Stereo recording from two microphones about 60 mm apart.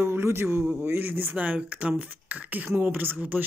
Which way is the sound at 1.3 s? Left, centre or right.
Right.